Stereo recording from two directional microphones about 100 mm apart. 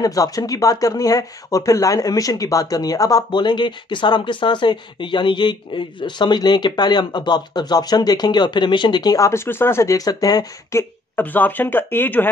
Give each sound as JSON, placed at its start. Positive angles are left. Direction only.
{"t": 0.0, "sound": "speech", "side_deg": 35}